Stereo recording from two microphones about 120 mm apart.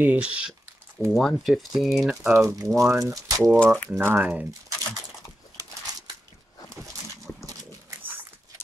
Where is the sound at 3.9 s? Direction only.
15° right (ahead or behind).